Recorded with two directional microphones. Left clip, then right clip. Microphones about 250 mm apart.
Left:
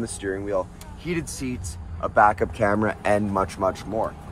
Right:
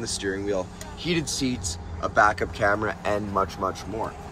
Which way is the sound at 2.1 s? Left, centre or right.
Centre.